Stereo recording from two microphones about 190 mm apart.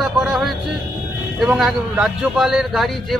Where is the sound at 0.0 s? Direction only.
Centre (ahead or behind).